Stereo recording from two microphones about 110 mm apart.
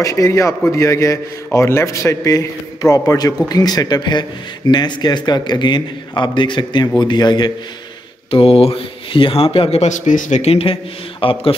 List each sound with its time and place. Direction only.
0.0 s a man's voice: 30° left (ahead or behind)
8.3 s speech: 60° left (ahead or behind)